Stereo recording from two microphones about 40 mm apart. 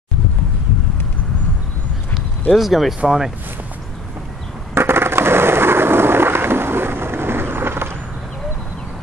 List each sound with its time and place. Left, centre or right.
2.5 s speech: centre
4.7 s skateboard: right